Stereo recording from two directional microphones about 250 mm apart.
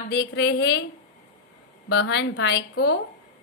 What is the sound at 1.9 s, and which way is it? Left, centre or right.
Speech, left.